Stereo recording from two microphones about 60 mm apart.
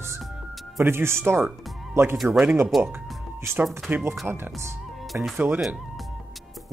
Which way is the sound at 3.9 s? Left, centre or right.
Right.